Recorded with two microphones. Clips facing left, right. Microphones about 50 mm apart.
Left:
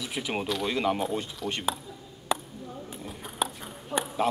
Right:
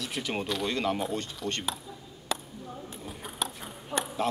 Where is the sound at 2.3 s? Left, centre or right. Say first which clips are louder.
Left 4 dB; centre.